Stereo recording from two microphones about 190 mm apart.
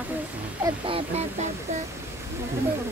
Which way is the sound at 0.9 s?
30° right (ahead or behind).